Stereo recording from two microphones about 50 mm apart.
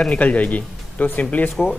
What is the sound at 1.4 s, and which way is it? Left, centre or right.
Speech, left.